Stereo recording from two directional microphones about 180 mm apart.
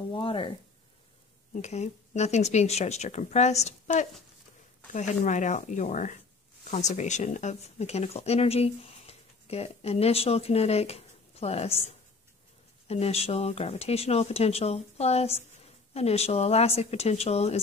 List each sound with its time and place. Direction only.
0.1 s speech: 30° left (ahead or behind)
1.5 s speech: 40° left (ahead or behind)
12.8 s speech: 35° left (ahead or behind)